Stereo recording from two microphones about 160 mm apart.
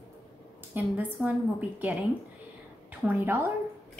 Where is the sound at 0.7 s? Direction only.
10° right (ahead or behind).